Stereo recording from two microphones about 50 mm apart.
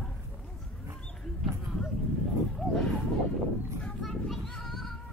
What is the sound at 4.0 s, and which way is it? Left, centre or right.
Child singing, centre.